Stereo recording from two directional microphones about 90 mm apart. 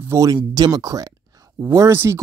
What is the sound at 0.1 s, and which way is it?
Speech, 35° right (ahead or behind).